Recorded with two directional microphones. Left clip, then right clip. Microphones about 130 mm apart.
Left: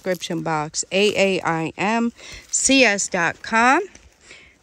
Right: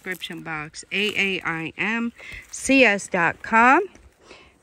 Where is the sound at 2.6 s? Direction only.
Centre (ahead or behind).